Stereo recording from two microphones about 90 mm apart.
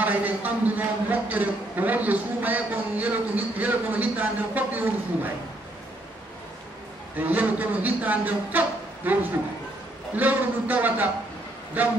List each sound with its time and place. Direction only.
0.0 s a man's voice: 20° right (ahead or behind)
7.2 s a man's voice: 20° right (ahead or behind)